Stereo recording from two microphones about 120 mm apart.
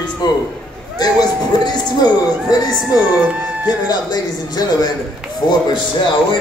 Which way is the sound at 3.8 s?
35° left (ahead or behind).